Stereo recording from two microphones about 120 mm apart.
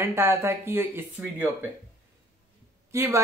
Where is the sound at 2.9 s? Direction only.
20° right (ahead or behind).